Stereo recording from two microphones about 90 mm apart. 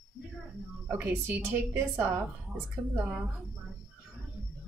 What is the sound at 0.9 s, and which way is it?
A woman's voice, 25° right (ahead or behind).